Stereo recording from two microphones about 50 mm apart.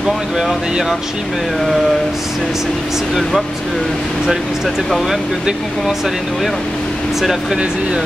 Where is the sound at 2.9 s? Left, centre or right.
Centre.